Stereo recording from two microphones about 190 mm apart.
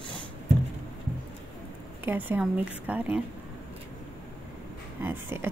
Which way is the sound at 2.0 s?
10° right (ahead or behind).